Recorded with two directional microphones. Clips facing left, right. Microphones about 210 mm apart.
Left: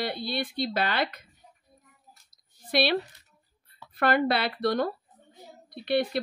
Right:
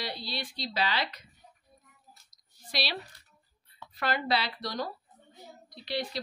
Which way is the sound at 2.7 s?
55° left (ahead or behind).